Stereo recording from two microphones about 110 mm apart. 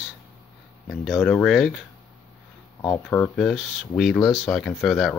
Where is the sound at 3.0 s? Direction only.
25° left (ahead or behind).